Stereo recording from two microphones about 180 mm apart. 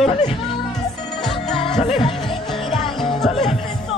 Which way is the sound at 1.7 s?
35° left (ahead or behind).